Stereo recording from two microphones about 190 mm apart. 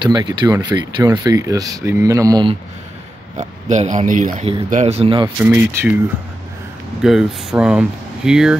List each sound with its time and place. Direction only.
0.0 s speech: 20° right (ahead or behind)
3.3 s speech: 40° right (ahead or behind)
5.4 s speech: 10° right (ahead or behind)
7.0 s speech: 5° right (ahead or behind)